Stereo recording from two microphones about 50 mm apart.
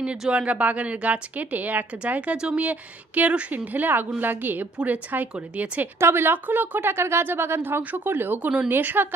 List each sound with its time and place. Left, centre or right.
0.3 s a woman's voice: right
2.3 s a woman's voice: centre
2.6 s a woman's voice: right
5.9 s a woman's voice: right